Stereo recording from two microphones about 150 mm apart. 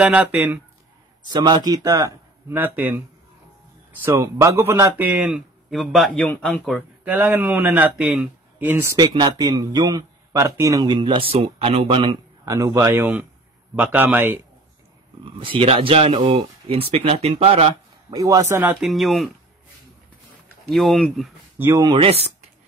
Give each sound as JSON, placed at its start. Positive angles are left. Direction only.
{"t": 0.0, "sound": "speech", "side_deg": -10}
{"t": 1.3, "sound": "speech", "side_deg": -30}
{"t": 4.0, "sound": "speech", "side_deg": -20}
{"t": 7.1, "sound": "speech", "side_deg": -15}
{"t": 8.9, "sound": "speech", "side_deg": -30}
{"t": 11.3, "sound": "speech", "side_deg": -45}
{"t": 12.4, "sound": "speech", "side_deg": -20}
{"t": 15.2, "sound": "speech", "side_deg": -35}
{"t": 18.1, "sound": "speech", "side_deg": -25}
{"t": 18.8, "sound": "speech", "side_deg": 0}
{"t": 20.7, "sound": "speech", "side_deg": 0}
{"t": 21.5, "sound": "speech", "side_deg": -15}
{"t": 21.8, "sound": "speech", "side_deg": -40}